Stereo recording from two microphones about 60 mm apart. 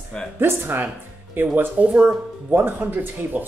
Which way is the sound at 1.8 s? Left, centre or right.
Right.